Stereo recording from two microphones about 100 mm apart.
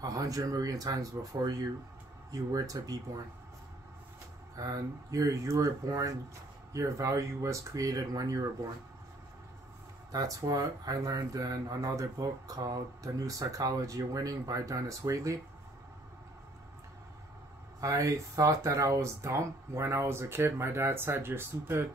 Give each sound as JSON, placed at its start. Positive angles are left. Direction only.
{"t": 0.0, "sound": "speech", "side_deg": -35}
{"t": 4.6, "sound": "speech", "side_deg": -35}
{"t": 10.1, "sound": "speech", "side_deg": -35}
{"t": 17.7, "sound": "speech", "side_deg": -35}